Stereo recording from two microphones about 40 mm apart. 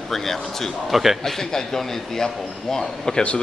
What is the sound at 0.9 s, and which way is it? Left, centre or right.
Speech, centre.